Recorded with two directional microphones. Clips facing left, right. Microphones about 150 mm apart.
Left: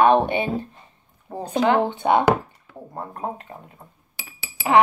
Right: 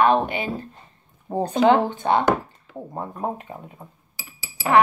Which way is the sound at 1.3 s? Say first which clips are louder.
Right 7 dB; 20° right (ahead or behind).